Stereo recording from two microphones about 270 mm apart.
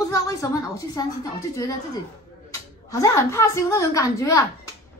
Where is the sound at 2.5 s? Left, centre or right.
Centre.